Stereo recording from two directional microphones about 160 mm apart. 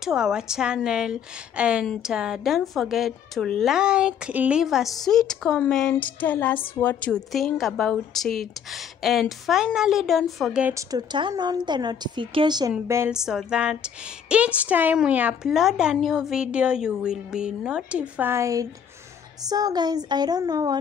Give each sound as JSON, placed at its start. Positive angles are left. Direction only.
{"t": 0.0, "sound": "a woman's voice", "side_deg": -5}
{"t": 7.3, "sound": "speech", "side_deg": 0}
{"t": 10.7, "sound": "a woman's voice", "side_deg": -20}
{"t": 13.1, "sound": "a woman's voice", "side_deg": -5}